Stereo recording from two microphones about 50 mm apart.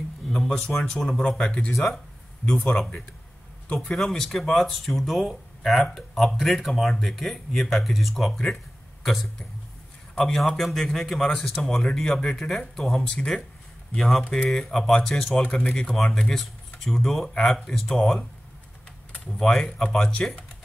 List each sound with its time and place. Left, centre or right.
0.3 s speech: centre
3.9 s a man's voice: centre
13.0 s speech: centre
13.9 s speech: centre
19.3 s speech: centre